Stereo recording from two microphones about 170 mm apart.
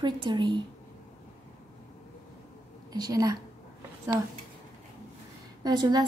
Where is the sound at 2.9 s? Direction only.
20° right (ahead or behind).